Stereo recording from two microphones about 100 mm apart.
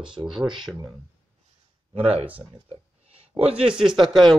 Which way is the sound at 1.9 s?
75° right (ahead or behind).